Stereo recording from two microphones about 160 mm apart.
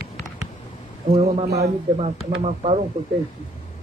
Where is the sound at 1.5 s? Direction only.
85° right.